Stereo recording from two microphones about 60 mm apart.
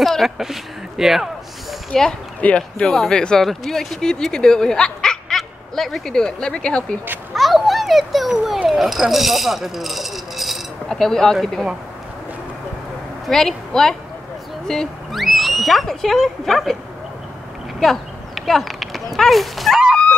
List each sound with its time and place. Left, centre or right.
0.0 s speech: centre
1.9 s speech: centre
7.3 s speech: centre
13.3 s speech: centre
15.1 s speech: centre
17.7 s a sound: centre
19.1 s speech: centre